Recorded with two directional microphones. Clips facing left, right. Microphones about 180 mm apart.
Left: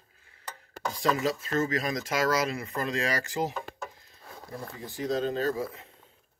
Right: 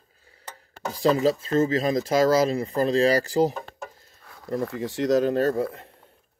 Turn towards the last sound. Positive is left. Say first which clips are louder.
# right 6 dB
turn(degrees=-65)  # may be behind; listen again after turning